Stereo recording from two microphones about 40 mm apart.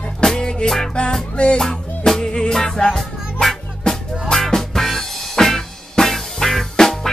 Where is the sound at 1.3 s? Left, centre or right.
Left.